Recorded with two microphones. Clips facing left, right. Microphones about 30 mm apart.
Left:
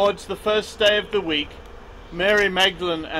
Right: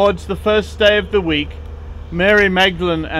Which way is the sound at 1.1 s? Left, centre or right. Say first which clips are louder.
Right 6 dB; right.